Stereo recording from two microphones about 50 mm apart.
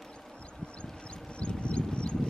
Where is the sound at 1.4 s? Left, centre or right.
Left.